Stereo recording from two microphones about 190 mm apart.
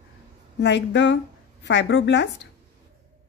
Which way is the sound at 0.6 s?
65° left (ahead or behind).